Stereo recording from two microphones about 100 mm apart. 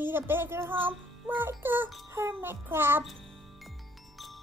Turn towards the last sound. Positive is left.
turn(degrees=-25)  # may be behind; listen again after turning